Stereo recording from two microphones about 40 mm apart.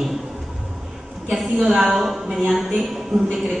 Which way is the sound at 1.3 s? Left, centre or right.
Centre.